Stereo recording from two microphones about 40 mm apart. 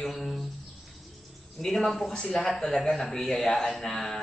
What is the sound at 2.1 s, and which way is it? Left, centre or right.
Speech, centre.